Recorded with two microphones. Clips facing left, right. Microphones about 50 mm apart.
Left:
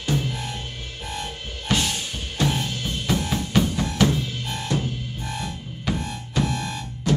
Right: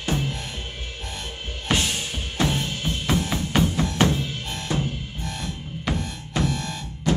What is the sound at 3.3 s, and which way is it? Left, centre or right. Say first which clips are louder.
Drum: even; right.